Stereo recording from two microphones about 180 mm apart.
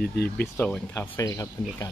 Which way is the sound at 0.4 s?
5° left (ahead or behind).